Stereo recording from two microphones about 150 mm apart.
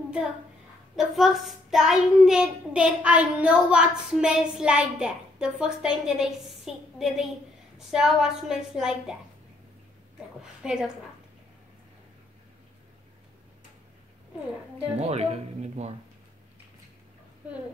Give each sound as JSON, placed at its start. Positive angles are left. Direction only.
{"t": 0.9, "sound": "a child's voice", "side_deg": 0}
{"t": 10.4, "sound": "a child's voice", "side_deg": -5}
{"t": 15.0, "sound": "speech", "side_deg": -45}